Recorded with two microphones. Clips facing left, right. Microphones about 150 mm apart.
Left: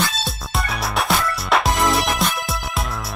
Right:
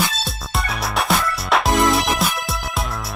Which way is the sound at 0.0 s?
Centre (ahead or behind).